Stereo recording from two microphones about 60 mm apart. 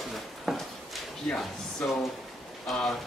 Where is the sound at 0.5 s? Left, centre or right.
Centre.